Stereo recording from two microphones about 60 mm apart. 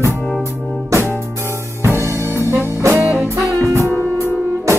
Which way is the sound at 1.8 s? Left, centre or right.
Right.